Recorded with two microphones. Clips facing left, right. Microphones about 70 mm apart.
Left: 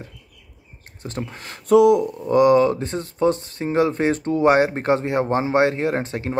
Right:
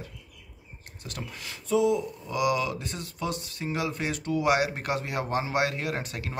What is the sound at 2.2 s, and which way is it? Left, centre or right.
Speech, left.